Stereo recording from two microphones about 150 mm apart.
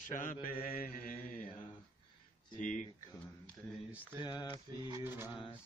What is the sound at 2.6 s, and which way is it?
Speech, 60° left (ahead or behind).